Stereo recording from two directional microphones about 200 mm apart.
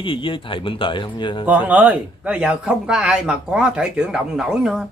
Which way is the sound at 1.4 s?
10° right (ahead or behind).